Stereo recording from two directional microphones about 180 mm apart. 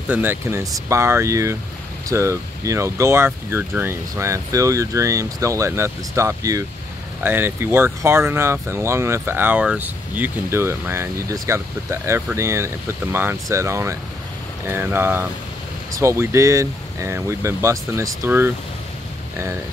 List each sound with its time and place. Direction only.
0.1 s speech: 10° right (ahead or behind)